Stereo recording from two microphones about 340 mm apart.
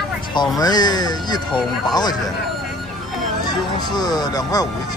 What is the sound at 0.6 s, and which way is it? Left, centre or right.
Speech, centre.